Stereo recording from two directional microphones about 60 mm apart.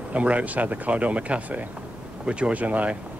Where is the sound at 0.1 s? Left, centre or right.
Right.